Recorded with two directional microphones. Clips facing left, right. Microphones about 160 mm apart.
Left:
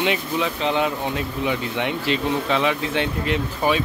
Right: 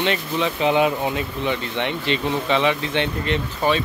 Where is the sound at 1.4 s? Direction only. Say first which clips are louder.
Left 1 dB; 5° left (ahead or behind).